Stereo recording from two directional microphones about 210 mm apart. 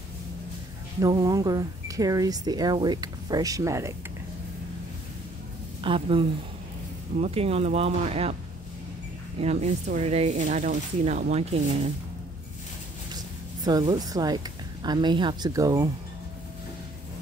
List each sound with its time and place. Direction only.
1.0 s speech: 15° right (ahead or behind)
5.8 s a woman's voice: 25° right (ahead or behind)
9.4 s speech: 30° right (ahead or behind)
13.7 s speech: 20° right (ahead or behind)